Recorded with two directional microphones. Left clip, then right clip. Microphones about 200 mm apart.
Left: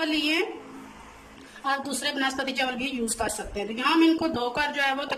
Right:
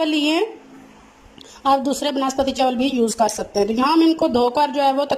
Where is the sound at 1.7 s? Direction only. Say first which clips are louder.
Right 10 dB; 35° right (ahead or behind).